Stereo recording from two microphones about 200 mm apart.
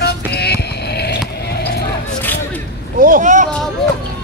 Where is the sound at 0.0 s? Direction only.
55° left (ahead or behind).